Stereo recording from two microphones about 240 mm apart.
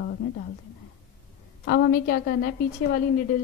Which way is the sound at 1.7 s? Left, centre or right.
Left.